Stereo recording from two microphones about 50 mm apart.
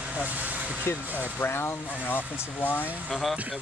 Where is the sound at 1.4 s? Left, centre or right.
Left.